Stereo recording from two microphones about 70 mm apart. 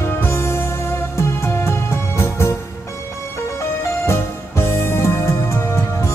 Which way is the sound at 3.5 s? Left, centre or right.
Left.